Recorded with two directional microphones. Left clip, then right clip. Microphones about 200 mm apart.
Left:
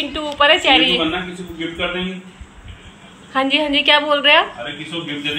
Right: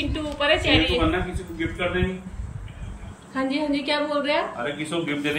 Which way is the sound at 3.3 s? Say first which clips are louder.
Left 8 dB; 5° right (ahead or behind).